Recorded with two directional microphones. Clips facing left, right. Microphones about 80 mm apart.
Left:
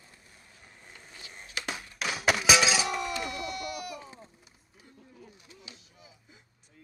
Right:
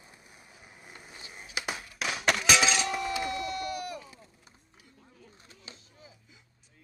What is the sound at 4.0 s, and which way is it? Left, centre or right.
Run, left.